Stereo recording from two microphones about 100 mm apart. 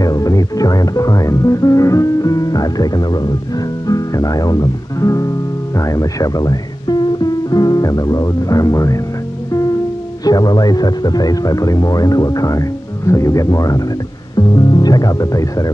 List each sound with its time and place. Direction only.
0.0 s speech: 35° left (ahead or behind)
10.2 s speech: 40° left (ahead or behind)